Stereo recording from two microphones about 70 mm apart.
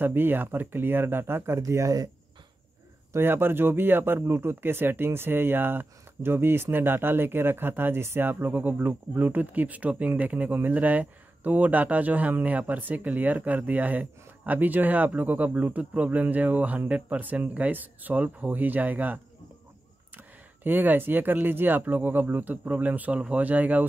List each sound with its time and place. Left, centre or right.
0.0 s speech: right
1.7 s speech: right
3.1 s speech: right
20.6 s speech: right